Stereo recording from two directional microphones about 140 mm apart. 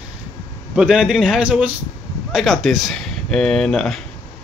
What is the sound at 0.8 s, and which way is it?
Speech, 5° right (ahead or behind).